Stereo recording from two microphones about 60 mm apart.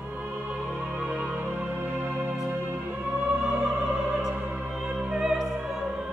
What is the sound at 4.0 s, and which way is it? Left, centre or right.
Opera, centre.